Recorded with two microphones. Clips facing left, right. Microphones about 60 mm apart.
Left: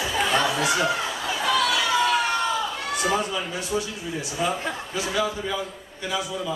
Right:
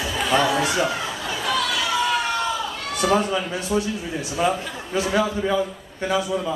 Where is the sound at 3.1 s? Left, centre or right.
Right.